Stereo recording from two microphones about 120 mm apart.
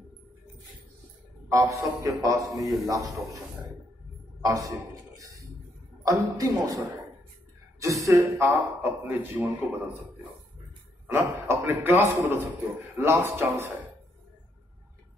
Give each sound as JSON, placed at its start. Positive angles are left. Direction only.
{"t": 1.5, "sound": "a man's voice", "side_deg": -25}
{"t": 2.5, "sound": "a man's voice", "side_deg": 0}
{"t": 2.9, "sound": "a man's voice", "side_deg": -30}
{"t": 4.4, "sound": "a man's voice", "side_deg": -30}
{"t": 7.8, "sound": "a man's voice", "side_deg": -25}
{"t": 8.8, "sound": "a man's voice", "side_deg": -15}
{"t": 11.1, "sound": "a man's voice", "side_deg": -15}